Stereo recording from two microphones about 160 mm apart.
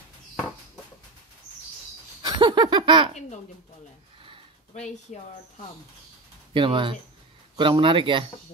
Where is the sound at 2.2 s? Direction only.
25° right (ahead or behind).